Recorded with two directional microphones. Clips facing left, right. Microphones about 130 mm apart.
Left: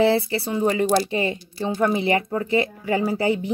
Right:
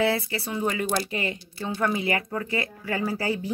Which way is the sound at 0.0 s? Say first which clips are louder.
Left 6 dB; 30° left (ahead or behind).